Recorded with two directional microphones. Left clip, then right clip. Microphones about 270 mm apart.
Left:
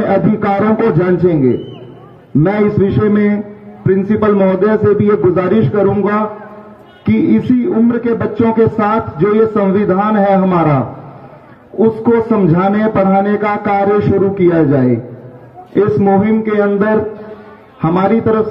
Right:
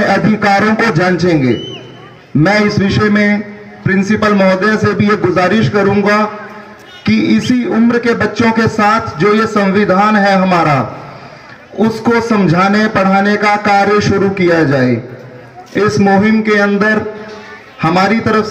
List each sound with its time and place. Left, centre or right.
0.0 s music: right
2.4 s music: right
11.8 s music: right